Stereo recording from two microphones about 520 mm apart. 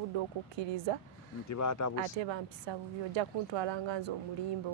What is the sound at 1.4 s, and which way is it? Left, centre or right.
Speech, left.